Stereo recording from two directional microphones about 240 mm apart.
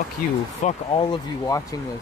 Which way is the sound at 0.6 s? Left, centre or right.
Left.